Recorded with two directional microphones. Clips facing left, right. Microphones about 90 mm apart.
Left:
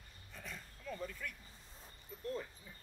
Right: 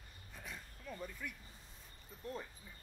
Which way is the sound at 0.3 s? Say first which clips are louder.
Left 1 dB; 10° right (ahead or behind).